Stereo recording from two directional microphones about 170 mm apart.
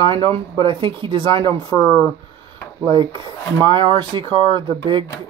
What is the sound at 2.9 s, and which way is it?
Speech, 25° right (ahead or behind).